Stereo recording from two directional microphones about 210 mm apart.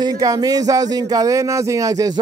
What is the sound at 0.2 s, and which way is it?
Speech, 15° right (ahead or behind).